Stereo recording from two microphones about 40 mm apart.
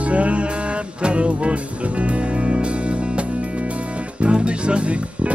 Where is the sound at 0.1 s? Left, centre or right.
Right.